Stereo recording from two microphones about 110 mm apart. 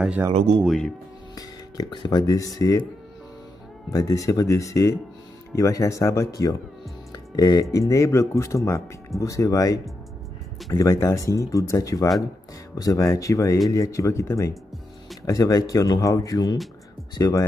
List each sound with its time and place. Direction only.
0.3 s speech: 90° right
0.7 s speech: 5° left (ahead or behind)
1.3 s speech: 40° left (ahead or behind)
3.9 s speech: 30° left (ahead or behind)